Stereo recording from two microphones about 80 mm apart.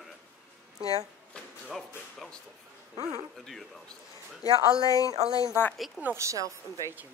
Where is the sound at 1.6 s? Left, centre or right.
Centre.